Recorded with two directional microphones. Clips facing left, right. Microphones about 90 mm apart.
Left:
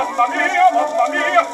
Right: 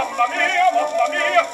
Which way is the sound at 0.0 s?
30° left (ahead or behind).